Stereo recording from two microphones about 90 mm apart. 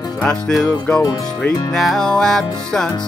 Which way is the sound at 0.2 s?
5° left (ahead or behind).